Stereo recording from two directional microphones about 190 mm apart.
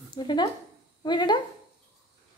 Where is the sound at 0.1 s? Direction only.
25° left (ahead or behind).